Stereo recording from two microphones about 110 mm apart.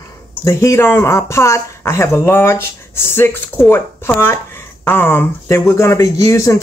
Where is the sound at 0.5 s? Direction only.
25° left (ahead or behind).